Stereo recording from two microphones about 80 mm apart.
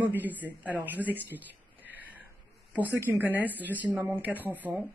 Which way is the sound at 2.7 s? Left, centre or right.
Right.